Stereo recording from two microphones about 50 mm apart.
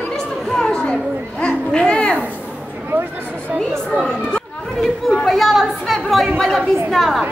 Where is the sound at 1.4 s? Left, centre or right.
Centre.